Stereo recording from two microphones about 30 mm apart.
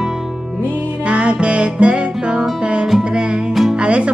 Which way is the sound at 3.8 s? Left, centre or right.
Right.